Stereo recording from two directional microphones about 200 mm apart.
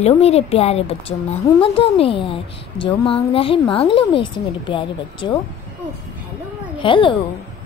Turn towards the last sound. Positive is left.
turn(degrees=25)  # may be behind; listen again after turning